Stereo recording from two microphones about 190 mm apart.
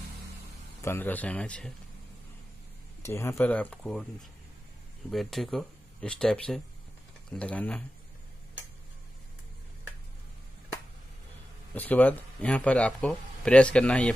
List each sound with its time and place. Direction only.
0.8 s speech: 10° left (ahead or behind)
3.0 s speech: 15° left (ahead or behind)
5.1 s speech: centre (ahead or behind)
11.7 s speech: 10° left (ahead or behind)